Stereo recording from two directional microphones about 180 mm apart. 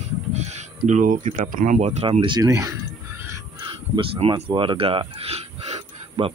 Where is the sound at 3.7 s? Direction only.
30° right (ahead or behind).